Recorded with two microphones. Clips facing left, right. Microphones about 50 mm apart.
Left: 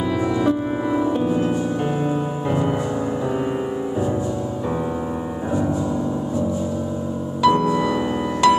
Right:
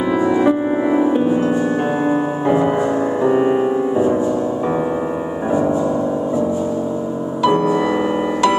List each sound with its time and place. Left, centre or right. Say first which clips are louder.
0.2 s music: right 5 dB; right
7.4 s music: right 1 dB; centre